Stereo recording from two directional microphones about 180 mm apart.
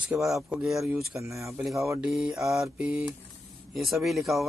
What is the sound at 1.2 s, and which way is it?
Speech, 15° right (ahead or behind).